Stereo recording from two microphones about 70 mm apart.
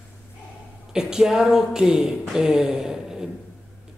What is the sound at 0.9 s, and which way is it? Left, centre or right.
Speech, centre.